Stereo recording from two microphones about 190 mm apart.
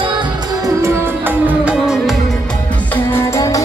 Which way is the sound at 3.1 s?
15° left (ahead or behind).